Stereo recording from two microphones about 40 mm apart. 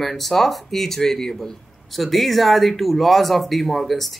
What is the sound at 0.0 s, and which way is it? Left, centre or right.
Speech, centre.